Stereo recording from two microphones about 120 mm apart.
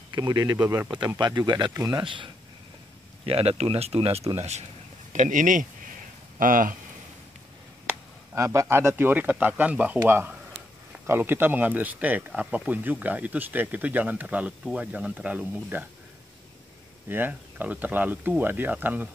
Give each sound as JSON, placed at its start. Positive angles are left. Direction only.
{"t": 0.1, "sound": "speech", "side_deg": -35}
{"t": 3.3, "sound": "speech", "side_deg": -55}
{"t": 4.4, "sound": "speech", "side_deg": -70}
{"t": 5.1, "sound": "speech", "side_deg": -90}
{"t": 8.4, "sound": "speech", "side_deg": -25}
{"t": 17.1, "sound": "speech", "side_deg": -15}